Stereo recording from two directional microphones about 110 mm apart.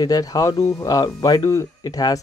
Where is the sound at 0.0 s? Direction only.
35° left (ahead or behind).